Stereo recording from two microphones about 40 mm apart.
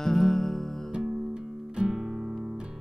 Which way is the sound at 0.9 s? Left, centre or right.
Right.